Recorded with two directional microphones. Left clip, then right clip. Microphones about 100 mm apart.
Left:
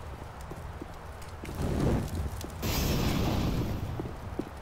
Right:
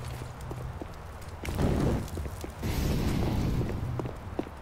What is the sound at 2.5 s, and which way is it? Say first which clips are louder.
Music: left 3 dB; 50° left (ahead or behind).